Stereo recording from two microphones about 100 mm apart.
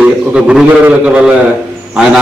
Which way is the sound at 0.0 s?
10° right (ahead or behind).